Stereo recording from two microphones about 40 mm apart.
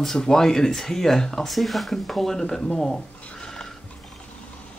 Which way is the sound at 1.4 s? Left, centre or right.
Centre.